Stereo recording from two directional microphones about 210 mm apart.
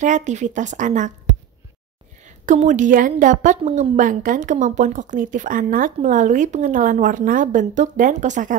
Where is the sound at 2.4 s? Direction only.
35° right (ahead or behind).